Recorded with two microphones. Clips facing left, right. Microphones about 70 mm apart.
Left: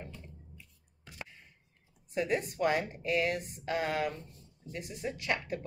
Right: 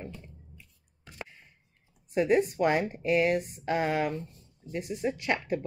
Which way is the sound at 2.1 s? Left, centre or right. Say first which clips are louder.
Right 7 dB; right.